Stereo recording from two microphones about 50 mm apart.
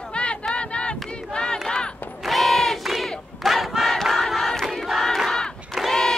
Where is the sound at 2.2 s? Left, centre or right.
Centre.